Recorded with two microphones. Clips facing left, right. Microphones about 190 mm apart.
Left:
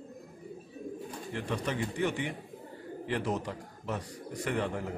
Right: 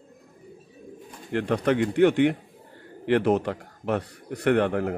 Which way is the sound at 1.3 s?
65° right (ahead or behind).